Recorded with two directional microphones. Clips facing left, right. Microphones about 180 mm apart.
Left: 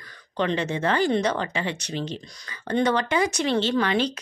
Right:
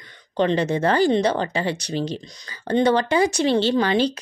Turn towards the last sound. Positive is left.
turn(degrees=-30)  # may be behind; listen again after turning